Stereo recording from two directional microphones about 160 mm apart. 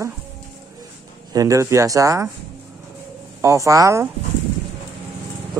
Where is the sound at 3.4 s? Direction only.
20° right (ahead or behind).